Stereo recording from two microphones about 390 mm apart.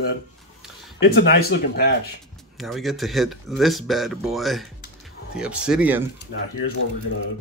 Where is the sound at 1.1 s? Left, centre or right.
Left.